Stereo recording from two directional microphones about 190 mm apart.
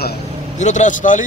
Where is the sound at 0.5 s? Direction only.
40° left (ahead or behind).